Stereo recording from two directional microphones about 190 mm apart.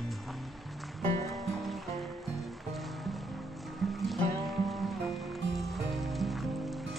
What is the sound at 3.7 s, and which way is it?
Music, centre (ahead or behind).